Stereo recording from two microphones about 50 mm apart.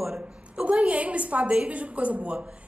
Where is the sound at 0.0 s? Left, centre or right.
Centre.